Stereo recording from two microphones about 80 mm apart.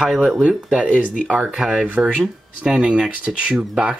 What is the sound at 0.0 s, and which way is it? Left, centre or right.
Speech, centre.